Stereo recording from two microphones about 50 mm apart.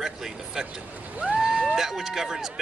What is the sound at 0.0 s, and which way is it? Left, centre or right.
Speech, centre.